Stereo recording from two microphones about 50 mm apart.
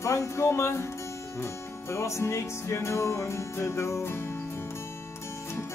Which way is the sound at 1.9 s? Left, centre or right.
Left.